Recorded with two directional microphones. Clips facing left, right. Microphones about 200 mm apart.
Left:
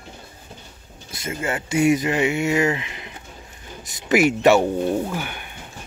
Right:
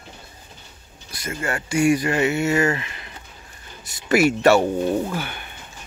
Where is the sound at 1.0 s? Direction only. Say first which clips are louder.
Left 1 dB; 25° left (ahead or behind).